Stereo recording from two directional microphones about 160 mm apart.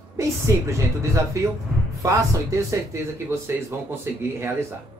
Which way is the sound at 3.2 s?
15° right (ahead or behind).